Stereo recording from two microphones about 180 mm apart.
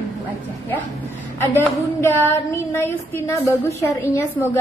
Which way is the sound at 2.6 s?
15° left (ahead or behind).